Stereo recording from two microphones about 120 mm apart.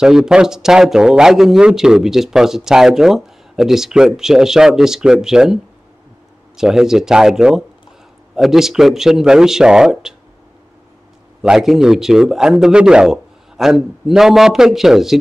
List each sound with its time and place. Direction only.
0.0 s speech: 5° right (ahead or behind)
11.4 s speech: 5° right (ahead or behind)